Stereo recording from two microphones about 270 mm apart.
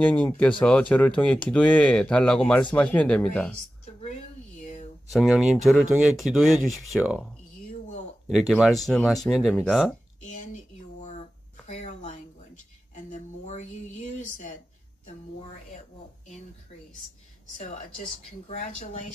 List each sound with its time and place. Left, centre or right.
0.0 s speech: centre
5.1 s speech: centre
8.3 s speech: centre
10.2 s a sound: left
18.5 s speech: left